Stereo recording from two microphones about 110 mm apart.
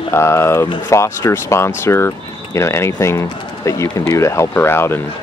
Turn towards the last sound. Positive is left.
turn(degrees=20)  # may be behind; listen again after turning